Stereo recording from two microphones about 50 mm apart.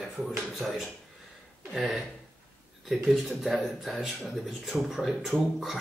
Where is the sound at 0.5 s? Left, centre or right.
Centre.